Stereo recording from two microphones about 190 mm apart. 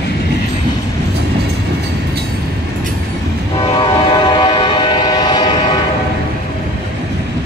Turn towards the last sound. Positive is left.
turn(degrees=20)  # may be behind; listen again after turning